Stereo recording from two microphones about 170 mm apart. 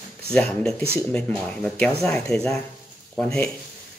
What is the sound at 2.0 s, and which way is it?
Speech, 5° left (ahead or behind).